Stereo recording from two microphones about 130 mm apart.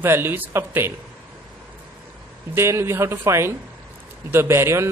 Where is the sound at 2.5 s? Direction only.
20° right (ahead or behind).